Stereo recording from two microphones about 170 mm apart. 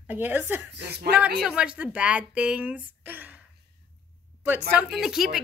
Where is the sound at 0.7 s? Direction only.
70° right (ahead or behind).